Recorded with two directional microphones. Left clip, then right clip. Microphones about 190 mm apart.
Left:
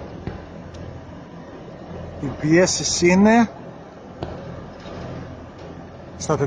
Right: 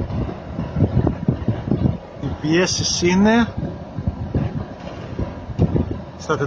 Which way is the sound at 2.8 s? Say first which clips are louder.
Even; 35° left (ahead or behind).